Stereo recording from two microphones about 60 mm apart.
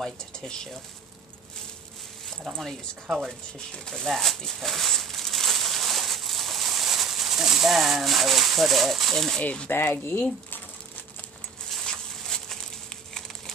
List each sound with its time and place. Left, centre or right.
0.0 s speech: centre
3.7 s crumpling: centre
9.4 s speech: left
9.7 s speech: left
11.8 s a sound: centre